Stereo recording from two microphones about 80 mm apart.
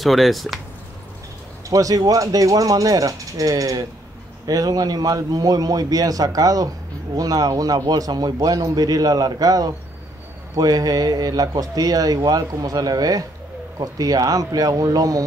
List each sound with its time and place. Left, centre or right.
0.0 s speech: centre
1.7 s speech: right